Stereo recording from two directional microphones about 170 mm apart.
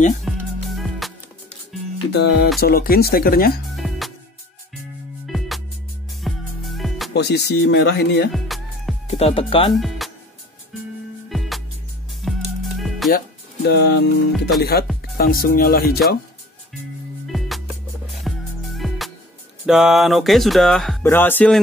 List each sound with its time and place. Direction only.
0.2 s music: centre (ahead or behind)
2.1 s speech: 75° left (ahead or behind)
2.6 s speech: 60° left (ahead or behind)
3.7 s music: centre (ahead or behind)
5.2 s music: centre (ahead or behind)
7.2 s speech: 80° left
8.3 s music: centre (ahead or behind)
9.0 s speech: 35° left (ahead or behind)
9.8 s music: centre (ahead or behind)
11.2 s music: centre (ahead or behind)
13.7 s speech: 75° left (ahead or behind)
17.3 s music: centre (ahead or behind)
19.6 s speech: 5° right (ahead or behind)
21.0 s speech: 10° left (ahead or behind)